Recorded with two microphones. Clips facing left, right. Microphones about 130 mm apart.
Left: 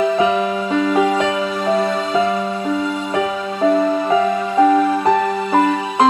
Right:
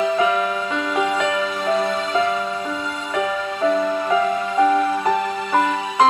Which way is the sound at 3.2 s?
30° left (ahead or behind).